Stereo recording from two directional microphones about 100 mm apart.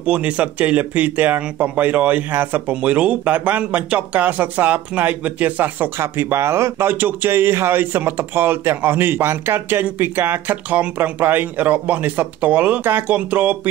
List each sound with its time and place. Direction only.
0.0 s speech: 15° right (ahead or behind)